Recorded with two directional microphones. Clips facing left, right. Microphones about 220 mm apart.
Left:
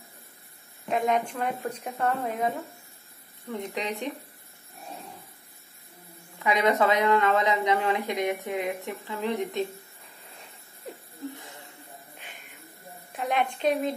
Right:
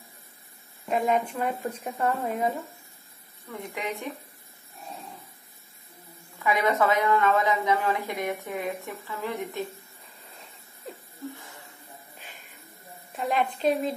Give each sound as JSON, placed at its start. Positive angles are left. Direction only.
{"t": 0.8, "sound": "a woman's voice", "side_deg": 0}
{"t": 3.4, "sound": "speech", "side_deg": 20}
{"t": 6.4, "sound": "speech", "side_deg": 20}
{"t": 13.1, "sound": "a woman's voice", "side_deg": 0}